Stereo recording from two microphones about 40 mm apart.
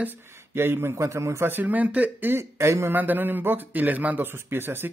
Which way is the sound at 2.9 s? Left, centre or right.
Right.